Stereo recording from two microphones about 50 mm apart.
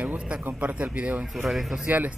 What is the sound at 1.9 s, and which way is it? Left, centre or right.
Speech, right.